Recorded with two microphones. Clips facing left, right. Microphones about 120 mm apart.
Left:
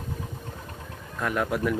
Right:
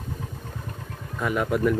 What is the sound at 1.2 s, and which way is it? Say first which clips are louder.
Speech: right 3 dB; centre (ahead or behind).